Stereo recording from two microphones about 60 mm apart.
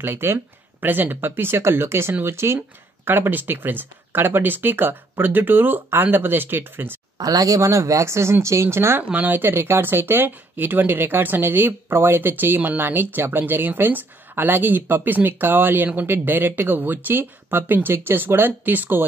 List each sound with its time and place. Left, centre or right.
0.0 s speech: right
7.2 s speech: right
9.1 s speech: right